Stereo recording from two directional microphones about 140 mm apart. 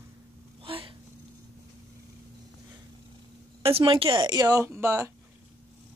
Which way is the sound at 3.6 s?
40° right (ahead or behind).